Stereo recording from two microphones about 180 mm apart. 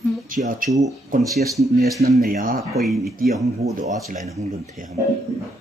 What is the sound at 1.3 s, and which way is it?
Speech, centre (ahead or behind).